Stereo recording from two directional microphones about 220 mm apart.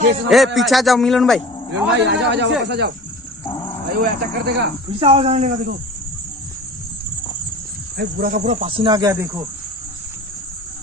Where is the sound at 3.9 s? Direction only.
45° right (ahead or behind).